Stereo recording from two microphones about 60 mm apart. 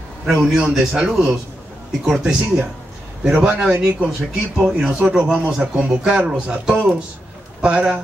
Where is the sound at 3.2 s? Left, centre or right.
Centre.